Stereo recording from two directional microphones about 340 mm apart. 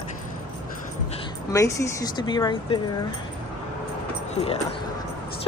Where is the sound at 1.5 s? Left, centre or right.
Centre.